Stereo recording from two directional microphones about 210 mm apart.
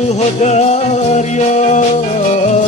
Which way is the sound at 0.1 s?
35° left (ahead or behind).